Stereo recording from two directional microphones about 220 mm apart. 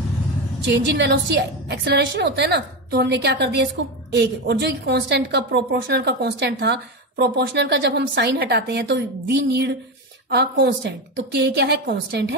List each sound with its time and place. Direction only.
0.7 s a woman's voice: 50° right (ahead or behind)